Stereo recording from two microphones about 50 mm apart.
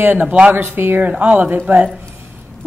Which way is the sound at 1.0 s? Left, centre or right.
Right.